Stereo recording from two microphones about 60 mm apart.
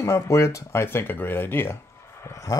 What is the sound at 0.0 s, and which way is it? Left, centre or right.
Speech, left.